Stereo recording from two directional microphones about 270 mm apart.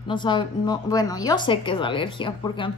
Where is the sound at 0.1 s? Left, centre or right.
Centre.